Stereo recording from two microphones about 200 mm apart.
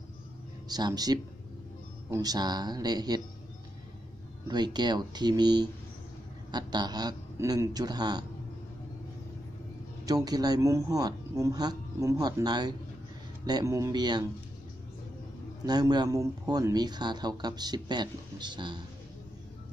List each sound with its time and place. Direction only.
0.7 s speech: 20° right (ahead or behind)
4.5 s speech: 20° right (ahead or behind)
10.0 s speech: 20° right (ahead or behind)
15.6 s speech: 20° right (ahead or behind)